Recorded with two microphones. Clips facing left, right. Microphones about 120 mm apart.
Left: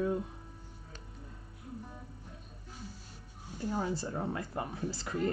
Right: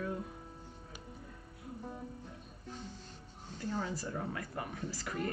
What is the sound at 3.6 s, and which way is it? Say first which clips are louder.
Speech: left 3 dB; 15° left (ahead or behind).